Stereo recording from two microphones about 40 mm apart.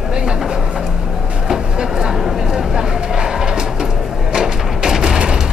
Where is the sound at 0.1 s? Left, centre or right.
Centre.